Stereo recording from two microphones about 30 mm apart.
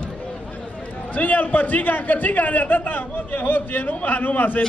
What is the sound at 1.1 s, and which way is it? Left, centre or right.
A man's voice, left.